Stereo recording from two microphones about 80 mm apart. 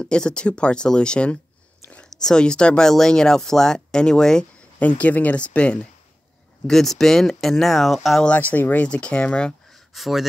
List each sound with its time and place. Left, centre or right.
0.0 s speech: centre
4.7 s speech: centre
6.7 s speech: centre
8.3 s speech: centre
9.7 s a sound: centre